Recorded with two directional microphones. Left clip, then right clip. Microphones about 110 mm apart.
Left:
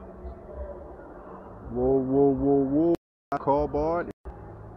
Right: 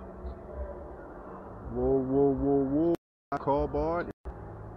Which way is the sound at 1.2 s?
30° left (ahead or behind).